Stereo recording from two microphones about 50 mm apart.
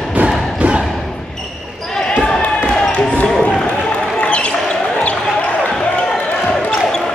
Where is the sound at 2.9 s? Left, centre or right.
Left.